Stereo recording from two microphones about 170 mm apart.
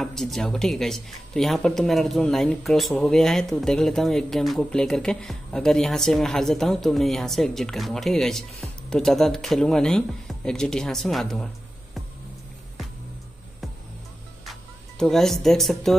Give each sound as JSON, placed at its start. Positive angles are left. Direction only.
{"t": 0.0, "sound": "speech", "side_deg": 0}
{"t": 14.4, "sound": "speech", "side_deg": 0}